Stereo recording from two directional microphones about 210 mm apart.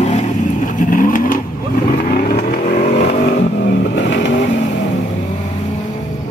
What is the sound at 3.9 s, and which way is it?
Vehicle, 55° left (ahead or behind).